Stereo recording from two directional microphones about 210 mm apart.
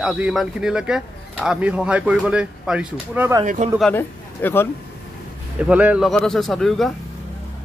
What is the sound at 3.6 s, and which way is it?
Speech, 35° right (ahead or behind).